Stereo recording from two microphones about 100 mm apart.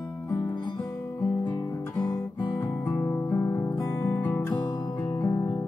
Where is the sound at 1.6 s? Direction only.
45° left (ahead or behind).